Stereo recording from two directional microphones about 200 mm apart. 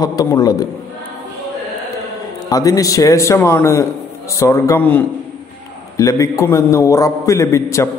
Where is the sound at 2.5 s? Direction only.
15° left (ahead or behind).